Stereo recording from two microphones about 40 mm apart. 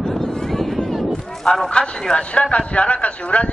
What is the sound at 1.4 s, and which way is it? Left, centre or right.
Speech, centre.